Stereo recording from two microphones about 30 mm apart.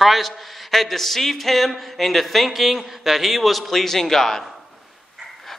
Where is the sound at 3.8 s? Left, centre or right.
Centre.